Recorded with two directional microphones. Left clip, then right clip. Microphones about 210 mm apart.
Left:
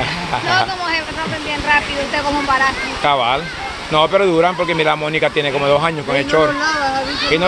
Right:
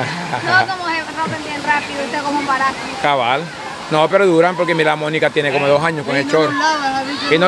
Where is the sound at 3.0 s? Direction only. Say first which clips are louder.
Even; 15° right (ahead or behind).